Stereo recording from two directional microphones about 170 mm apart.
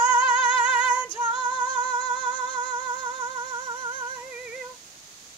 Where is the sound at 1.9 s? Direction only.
25° right (ahead or behind).